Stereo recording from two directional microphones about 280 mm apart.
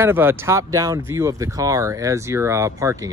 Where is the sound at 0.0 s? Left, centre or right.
Centre.